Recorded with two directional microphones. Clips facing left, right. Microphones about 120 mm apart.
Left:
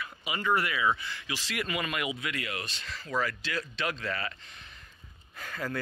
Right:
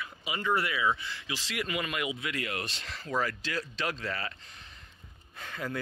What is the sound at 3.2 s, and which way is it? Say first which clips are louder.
Speech: left 1 dB; 40° right (ahead or behind).